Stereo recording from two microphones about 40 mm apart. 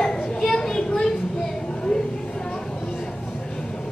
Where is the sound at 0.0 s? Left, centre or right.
Centre.